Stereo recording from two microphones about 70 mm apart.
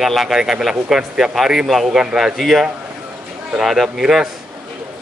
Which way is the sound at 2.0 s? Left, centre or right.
Centre.